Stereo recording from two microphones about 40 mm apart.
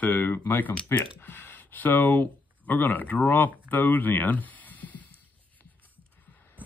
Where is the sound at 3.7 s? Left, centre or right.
Left.